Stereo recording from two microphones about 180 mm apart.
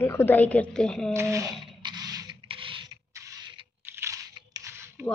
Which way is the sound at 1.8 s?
25° right (ahead or behind).